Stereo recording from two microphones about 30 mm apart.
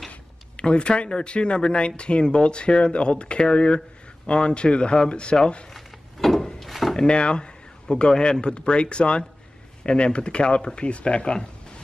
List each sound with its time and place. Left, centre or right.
0.6 s speech: left
5.7 s a sound: centre
6.7 s drawer open or close: centre
7.0 s speech: left